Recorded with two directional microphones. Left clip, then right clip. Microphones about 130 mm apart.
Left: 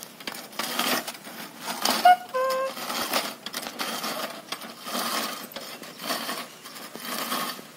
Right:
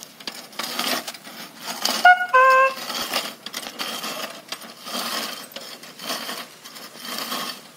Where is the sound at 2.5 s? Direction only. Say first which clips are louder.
Right 11 dB; 10° right (ahead or behind).